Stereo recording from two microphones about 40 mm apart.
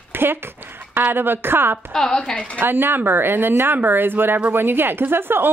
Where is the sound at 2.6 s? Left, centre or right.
Right.